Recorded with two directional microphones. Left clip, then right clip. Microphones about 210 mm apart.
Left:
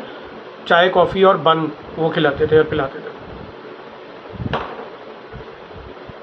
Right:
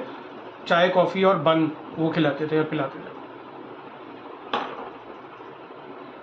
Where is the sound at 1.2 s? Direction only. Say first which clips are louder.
Left 6 dB; 5° left (ahead or behind).